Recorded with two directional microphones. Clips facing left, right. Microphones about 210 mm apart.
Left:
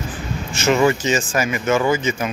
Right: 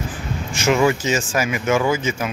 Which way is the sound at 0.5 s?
10° right (ahead or behind).